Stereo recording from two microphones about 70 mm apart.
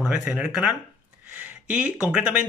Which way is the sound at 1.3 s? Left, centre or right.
Centre.